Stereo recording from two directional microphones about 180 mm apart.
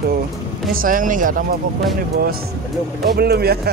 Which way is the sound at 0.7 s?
50° right (ahead or behind).